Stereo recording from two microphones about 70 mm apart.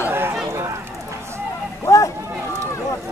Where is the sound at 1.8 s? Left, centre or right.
Left.